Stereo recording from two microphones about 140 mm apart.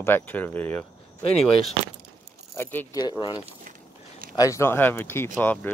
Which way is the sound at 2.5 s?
15° left (ahead or behind).